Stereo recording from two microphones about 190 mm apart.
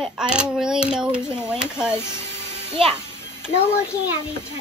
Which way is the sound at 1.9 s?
15° left (ahead or behind).